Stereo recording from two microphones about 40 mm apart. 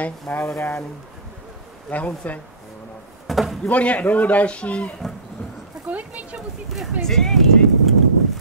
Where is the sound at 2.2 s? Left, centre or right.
Left.